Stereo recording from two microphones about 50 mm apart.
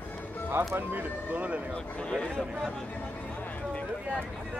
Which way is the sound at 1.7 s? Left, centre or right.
Centre.